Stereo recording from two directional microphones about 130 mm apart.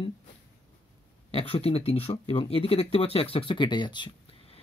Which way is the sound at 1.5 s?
50° left (ahead or behind).